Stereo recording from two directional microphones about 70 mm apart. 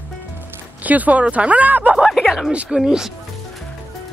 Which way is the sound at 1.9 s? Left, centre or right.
Centre.